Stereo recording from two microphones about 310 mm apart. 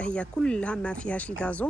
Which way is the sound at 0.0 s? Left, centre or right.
Centre.